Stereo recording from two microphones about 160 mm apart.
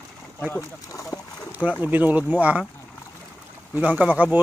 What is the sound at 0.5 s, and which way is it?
Speech, 20° left (ahead or behind).